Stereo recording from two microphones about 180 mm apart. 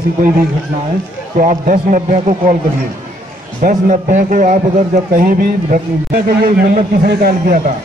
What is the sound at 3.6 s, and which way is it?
A man's voice, 45° right (ahead or behind).